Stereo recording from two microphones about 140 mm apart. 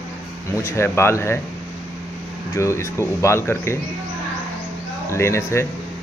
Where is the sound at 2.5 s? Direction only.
20° left (ahead or behind).